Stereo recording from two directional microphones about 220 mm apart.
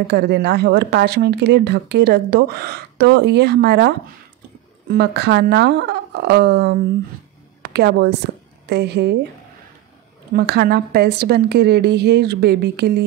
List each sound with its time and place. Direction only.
0.1 s a woman's voice: 50° right (ahead or behind)
10.3 s a woman's voice: 45° right (ahead or behind)